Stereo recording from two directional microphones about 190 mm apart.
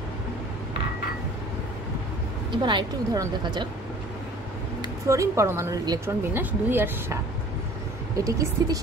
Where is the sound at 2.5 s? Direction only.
25° right (ahead or behind).